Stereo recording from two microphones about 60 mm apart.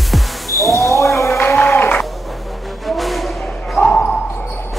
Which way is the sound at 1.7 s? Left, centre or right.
Left.